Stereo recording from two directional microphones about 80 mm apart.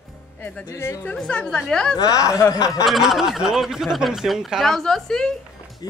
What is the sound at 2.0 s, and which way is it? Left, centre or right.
Speech, left.